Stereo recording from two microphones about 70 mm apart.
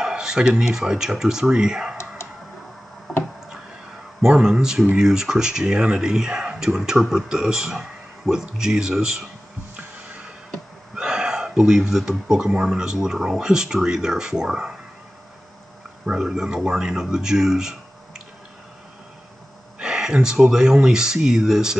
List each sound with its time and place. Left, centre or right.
0.0 s speech: centre
4.2 s speech: centre
9.8 s music: centre
11.0 s speech: centre
16.1 s speech: centre
19.8 s speech: centre